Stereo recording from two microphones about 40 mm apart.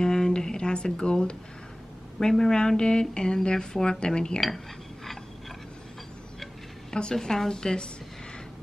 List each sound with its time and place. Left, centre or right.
0.0 s a sound: centre
2.1 s a woman's voice: centre
6.9 s a woman's voice: centre